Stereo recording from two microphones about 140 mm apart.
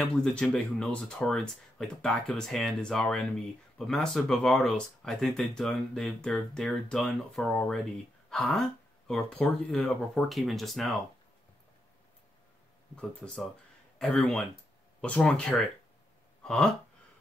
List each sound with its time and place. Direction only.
0.2 s speech: 5° left (ahead or behind)
12.9 s speech: 5° left (ahead or behind)